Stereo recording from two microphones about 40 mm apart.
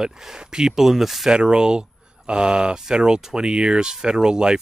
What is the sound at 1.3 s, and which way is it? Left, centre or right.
Speech, centre.